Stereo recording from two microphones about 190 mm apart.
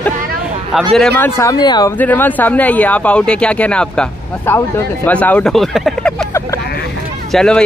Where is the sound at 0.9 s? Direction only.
5° left (ahead or behind).